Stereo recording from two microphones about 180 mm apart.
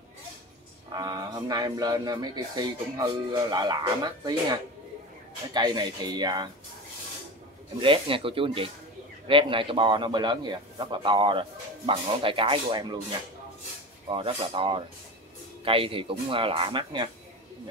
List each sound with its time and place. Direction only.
0.9 s a man's voice: 20° right (ahead or behind)
7.8 s a man's voice: 30° right (ahead or behind)
14.0 s a man's voice: 30° right (ahead or behind)